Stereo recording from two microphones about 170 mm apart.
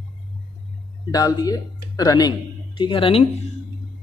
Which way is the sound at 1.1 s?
20° left (ahead or behind).